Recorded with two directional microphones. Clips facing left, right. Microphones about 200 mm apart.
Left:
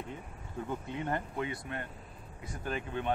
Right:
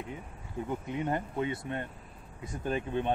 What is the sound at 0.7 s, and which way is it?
Speech, 15° right (ahead or behind).